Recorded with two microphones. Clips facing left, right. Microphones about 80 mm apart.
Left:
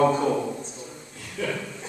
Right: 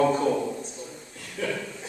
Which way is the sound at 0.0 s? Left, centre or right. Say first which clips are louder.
Left 1 dB; centre.